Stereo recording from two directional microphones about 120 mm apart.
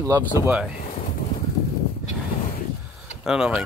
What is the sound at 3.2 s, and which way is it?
Speech, 5° right (ahead or behind).